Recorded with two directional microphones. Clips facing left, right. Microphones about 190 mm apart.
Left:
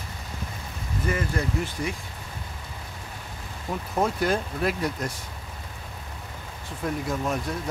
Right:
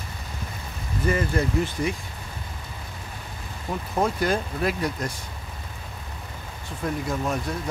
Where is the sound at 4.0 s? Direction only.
Centre (ahead or behind).